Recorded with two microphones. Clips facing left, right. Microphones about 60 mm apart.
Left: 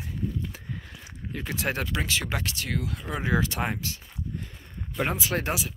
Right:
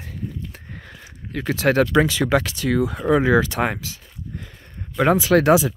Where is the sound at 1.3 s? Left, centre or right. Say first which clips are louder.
Right 11 dB; right.